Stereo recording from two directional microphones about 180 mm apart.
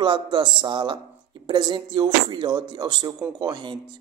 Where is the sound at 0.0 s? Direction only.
25° right (ahead or behind).